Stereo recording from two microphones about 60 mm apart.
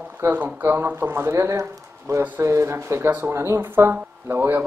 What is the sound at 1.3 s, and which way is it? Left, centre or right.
Speech, right.